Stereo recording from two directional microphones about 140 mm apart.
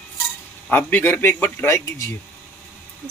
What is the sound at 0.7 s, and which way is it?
A man's voice, 15° left (ahead or behind).